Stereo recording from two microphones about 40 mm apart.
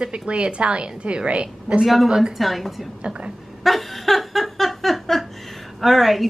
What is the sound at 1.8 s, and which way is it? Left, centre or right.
A woman's voice, centre.